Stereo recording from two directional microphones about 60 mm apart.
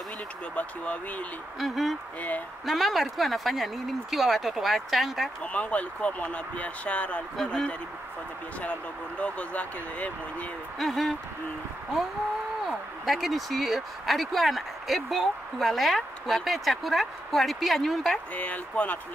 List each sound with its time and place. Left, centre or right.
0.6 s speech: left
1.6 s speech: centre
5.4 s speech: left
9.2 s speech: left
10.8 s speech: centre
12.6 s speech: centre
18.3 s speech: left